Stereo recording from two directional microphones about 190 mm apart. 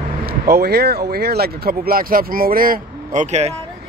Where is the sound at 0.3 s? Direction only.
55° right (ahead or behind); by 3.5 s 35° right (ahead or behind).